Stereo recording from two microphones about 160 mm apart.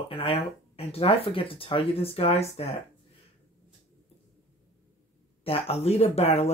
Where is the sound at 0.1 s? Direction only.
35° left (ahead or behind).